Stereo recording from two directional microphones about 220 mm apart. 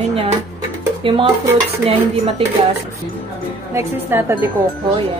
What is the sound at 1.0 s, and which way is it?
Stir, 25° right (ahead or behind).